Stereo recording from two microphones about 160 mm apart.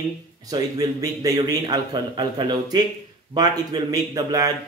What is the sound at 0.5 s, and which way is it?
A man's voice, 25° right (ahead or behind).